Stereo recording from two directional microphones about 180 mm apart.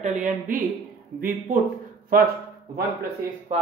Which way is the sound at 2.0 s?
60° right (ahead or behind).